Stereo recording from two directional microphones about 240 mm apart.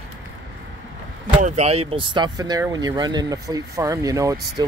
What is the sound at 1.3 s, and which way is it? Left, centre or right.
Speech, right.